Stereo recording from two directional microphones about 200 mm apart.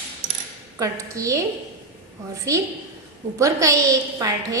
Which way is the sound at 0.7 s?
15° right (ahead or behind).